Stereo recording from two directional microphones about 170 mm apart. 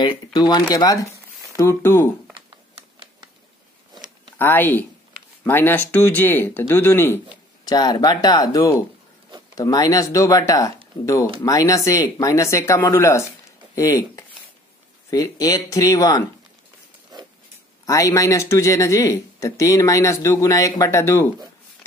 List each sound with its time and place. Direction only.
0.0 s speech: 25° left (ahead or behind)
4.4 s speech: 10° left (ahead or behind)
17.8 s speech: 20° left (ahead or behind)